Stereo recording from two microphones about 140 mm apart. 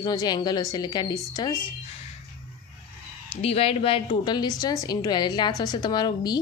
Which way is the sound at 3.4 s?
45° left (ahead or behind).